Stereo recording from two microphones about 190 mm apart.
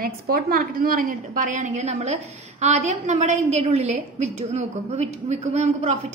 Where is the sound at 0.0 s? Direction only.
50° right (ahead or behind).